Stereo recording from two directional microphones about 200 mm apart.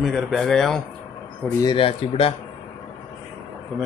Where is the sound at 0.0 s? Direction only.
Centre (ahead or behind).